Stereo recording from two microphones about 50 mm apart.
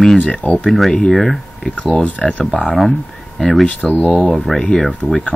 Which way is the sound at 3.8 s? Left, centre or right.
Centre.